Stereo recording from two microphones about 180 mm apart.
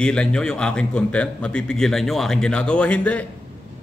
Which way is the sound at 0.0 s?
5° left (ahead or behind).